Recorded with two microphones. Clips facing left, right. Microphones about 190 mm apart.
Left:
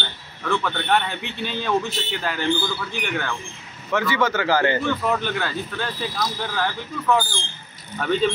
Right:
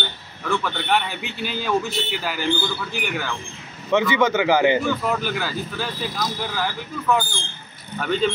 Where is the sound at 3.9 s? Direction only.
20° right (ahead or behind).